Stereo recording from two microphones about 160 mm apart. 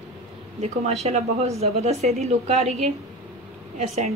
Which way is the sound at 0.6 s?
40° right (ahead or behind).